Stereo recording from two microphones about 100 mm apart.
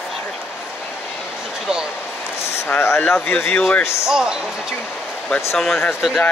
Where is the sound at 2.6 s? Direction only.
25° left (ahead or behind).